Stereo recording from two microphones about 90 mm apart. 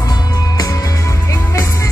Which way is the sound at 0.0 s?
40° left (ahead or behind).